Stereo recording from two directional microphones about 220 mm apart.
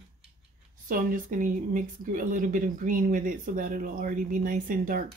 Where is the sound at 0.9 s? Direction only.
40° right (ahead or behind).